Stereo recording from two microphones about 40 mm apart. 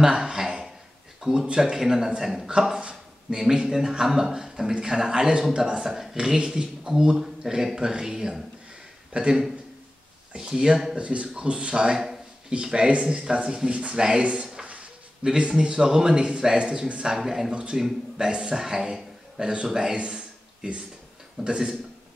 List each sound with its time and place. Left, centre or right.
0.0 s a sound: centre
1.2 s speech: right
1.8 s a man's voice: centre
3.3 s a man's voice: centre
6.1 s a man's voice: centre
11.0 s speech: right
13.7 s speech: right
13.9 s a man's voice: centre
14.2 s a man's voice: right; by 17.6 s centre
18.1 s a man's voice: right